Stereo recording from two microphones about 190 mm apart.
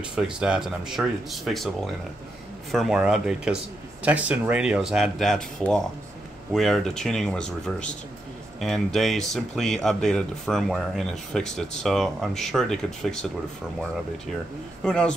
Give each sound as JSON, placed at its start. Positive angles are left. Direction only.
{"t": 0.1, "sound": "speech", "side_deg": -5}
{"t": 2.7, "sound": "speech", "side_deg": 0}
{"t": 14.8, "sound": "speech", "side_deg": 5}